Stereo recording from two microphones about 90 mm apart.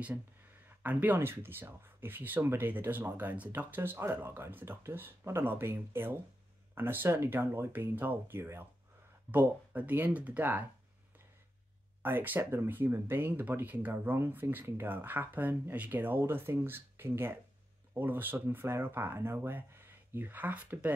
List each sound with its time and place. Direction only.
0.7 s speech: 20° right (ahead or behind)
12.0 s speech: 20° right (ahead or behind)